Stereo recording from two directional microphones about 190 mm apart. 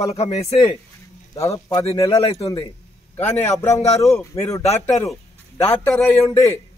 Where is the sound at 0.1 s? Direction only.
35° left (ahead or behind).